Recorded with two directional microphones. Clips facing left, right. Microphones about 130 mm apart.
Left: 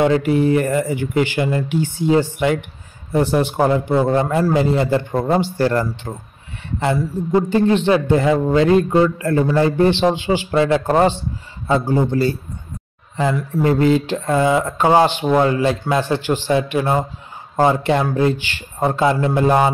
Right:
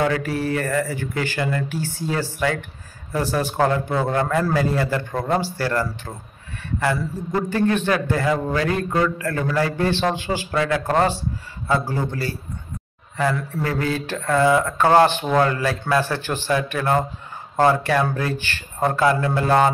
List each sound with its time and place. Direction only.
0.0 s a man's voice: 20° left (ahead or behind)
4.1 s a man's voice: 25° left (ahead or behind)